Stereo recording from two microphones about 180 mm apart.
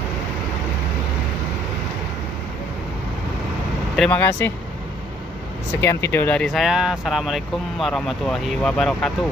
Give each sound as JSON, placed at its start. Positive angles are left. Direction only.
{"t": 3.9, "sound": "speech", "side_deg": 5}
{"t": 5.8, "sound": "speech", "side_deg": 15}